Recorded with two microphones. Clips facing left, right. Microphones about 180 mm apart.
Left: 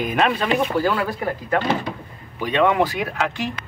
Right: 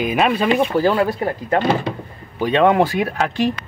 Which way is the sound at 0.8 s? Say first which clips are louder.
Right 5 dB; 30° right (ahead or behind).